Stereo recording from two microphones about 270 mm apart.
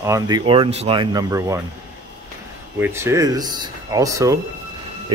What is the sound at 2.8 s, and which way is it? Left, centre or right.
A man's voice, centre.